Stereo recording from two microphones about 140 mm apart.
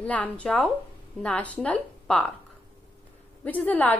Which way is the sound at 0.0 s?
10° left (ahead or behind).